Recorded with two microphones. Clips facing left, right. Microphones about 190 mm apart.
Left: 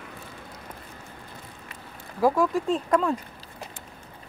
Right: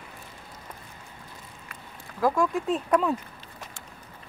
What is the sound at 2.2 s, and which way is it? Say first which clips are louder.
Speech: left 2 dB; 10° left (ahead or behind).